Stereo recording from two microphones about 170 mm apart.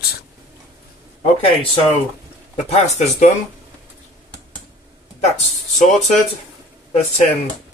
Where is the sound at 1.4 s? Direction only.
30° left (ahead or behind).